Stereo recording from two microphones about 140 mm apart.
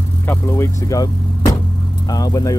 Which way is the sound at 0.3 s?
20° left (ahead or behind).